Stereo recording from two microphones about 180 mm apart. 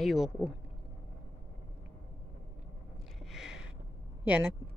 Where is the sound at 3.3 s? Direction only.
5° right (ahead or behind).